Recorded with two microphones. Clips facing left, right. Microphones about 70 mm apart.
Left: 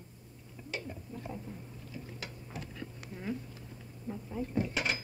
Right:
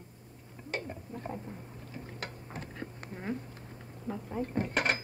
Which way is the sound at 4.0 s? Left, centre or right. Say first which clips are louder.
Right 3 dB; right.